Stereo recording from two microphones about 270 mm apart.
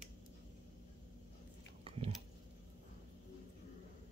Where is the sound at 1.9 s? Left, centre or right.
Centre.